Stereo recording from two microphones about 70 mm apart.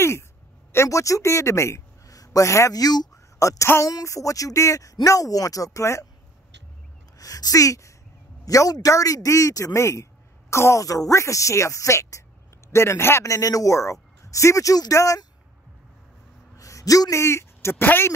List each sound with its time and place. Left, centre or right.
0.7 s a man's voice: left
3.3 s a woman's voice: left
7.2 s speech: left
16.5 s a sound: left
17.2 s speech: left